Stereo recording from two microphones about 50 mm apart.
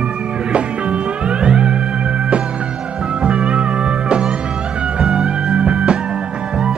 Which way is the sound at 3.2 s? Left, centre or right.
Right.